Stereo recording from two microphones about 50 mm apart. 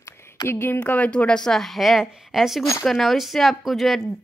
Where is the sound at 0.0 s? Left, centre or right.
Left.